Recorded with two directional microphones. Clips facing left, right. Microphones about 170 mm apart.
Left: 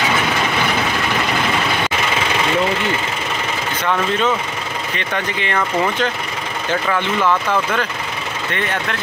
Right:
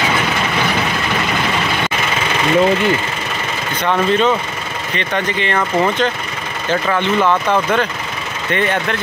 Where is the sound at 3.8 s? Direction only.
20° right (ahead or behind).